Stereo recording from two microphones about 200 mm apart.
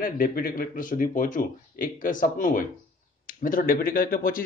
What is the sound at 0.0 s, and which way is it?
Speech, 45° left (ahead or behind).